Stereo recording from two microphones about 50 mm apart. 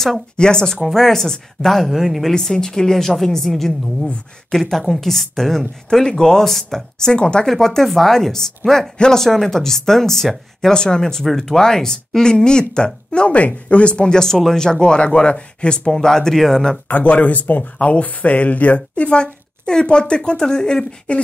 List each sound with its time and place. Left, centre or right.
0.4 s speech: centre
2.3 s speech: centre
16.8 s speech: left; by 21.2 s centre